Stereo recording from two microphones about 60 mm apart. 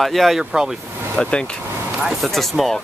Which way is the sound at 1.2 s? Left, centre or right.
Centre.